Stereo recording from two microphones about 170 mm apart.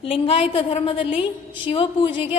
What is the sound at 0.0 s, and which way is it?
A woman's voice, 35° left (ahead or behind).